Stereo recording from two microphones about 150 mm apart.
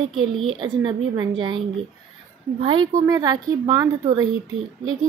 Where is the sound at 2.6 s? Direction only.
35° right (ahead or behind).